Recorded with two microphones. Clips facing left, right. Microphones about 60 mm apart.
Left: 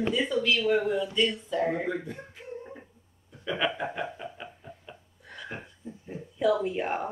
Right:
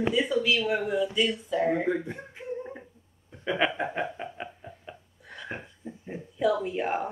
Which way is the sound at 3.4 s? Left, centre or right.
Right.